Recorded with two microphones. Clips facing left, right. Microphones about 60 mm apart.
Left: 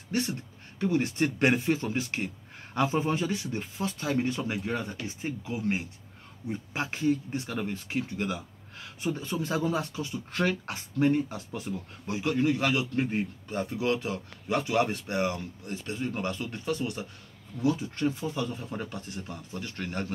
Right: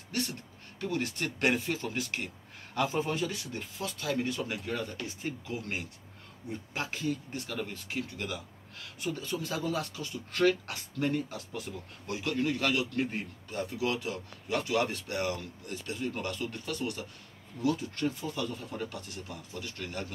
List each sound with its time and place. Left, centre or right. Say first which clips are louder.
0.1 s speech: left 5 dB; left